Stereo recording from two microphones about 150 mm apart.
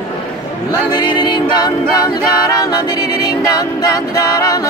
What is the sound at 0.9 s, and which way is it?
Music, 30° left (ahead or behind).